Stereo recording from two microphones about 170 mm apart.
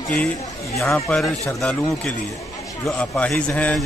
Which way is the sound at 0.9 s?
5° left (ahead or behind).